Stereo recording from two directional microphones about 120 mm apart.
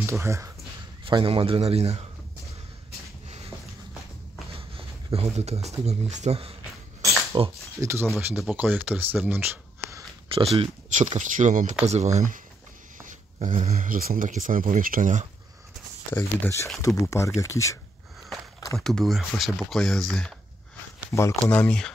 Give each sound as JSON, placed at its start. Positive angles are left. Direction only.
{"t": 0.0, "sound": "speech", "side_deg": -25}
{"t": 1.0, "sound": "a man's voice", "side_deg": -50}
{"t": 3.3, "sound": "a sound", "side_deg": -60}
{"t": 4.6, "sound": "speech", "side_deg": -50}
{"t": 7.3, "sound": "speech", "side_deg": -40}
{"t": 7.8, "sound": "speech", "side_deg": -20}
{"t": 8.4, "sound": "speech", "side_deg": -10}
{"t": 10.2, "sound": "speech", "side_deg": -50}
{"t": 11.0, "sound": "speech", "side_deg": -80}
{"t": 11.8, "sound": "speech", "side_deg": -70}
{"t": 13.0, "sound": "speech", "side_deg": -90}
{"t": 16.1, "sound": "speech", "side_deg": 15}
{"t": 18.8, "sound": "speech", "side_deg": 5}
{"t": 21.5, "sound": "speech", "side_deg": 10}